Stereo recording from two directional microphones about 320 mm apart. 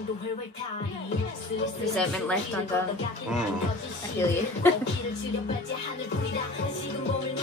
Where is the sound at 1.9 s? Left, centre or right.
Centre.